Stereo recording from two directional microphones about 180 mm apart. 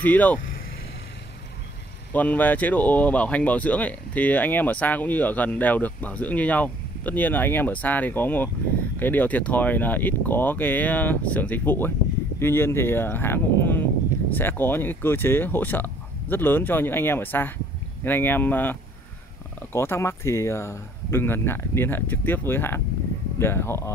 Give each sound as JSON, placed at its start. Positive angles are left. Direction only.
{"t": 0.0, "sound": "speech", "side_deg": 10}
{"t": 2.1, "sound": "speech", "side_deg": 10}